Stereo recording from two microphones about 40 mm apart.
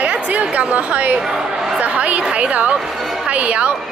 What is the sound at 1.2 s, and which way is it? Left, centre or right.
Speech, centre.